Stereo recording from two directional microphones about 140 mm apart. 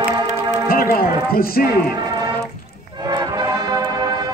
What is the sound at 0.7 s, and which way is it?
Speech, 90° left.